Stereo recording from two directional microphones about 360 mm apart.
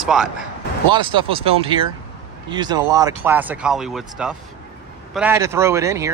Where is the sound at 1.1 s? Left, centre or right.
Centre.